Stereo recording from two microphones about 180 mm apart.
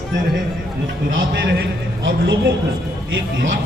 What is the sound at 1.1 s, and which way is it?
A man's voice, 80° right.